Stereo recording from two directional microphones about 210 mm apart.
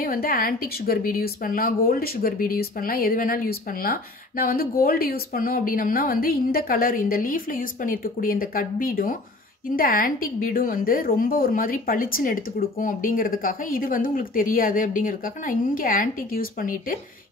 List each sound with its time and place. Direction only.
0.0 s a woman's voice: 45° left (ahead or behind)